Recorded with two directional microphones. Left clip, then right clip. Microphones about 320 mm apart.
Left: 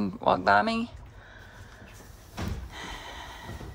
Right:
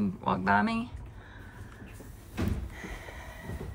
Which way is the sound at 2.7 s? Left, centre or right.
Centre.